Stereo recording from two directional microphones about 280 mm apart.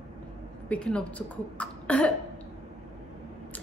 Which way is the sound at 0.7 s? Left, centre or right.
Centre.